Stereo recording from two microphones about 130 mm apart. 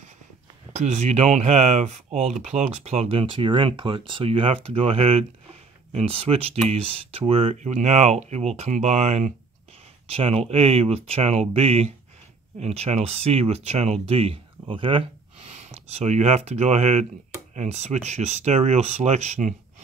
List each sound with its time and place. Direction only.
0.7 s speech: 55° right (ahead or behind)
7.7 s speech: 60° right (ahead or behind)
10.0 s speech: 45° right (ahead or behind)
15.5 s speech: 55° right (ahead or behind)